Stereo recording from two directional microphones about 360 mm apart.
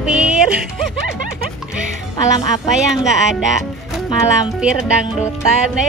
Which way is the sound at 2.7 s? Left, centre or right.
Centre.